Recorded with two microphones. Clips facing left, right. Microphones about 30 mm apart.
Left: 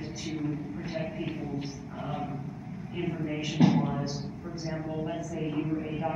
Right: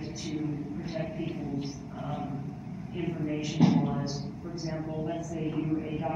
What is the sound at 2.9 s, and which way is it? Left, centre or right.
A man's voice, centre.